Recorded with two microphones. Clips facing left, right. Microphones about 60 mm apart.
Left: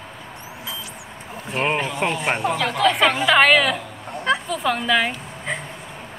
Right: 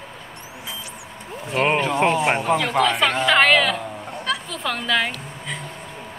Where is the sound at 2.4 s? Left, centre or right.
Centre.